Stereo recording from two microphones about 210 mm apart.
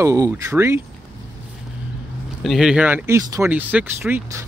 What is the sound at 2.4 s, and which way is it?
Speech, centre (ahead or behind).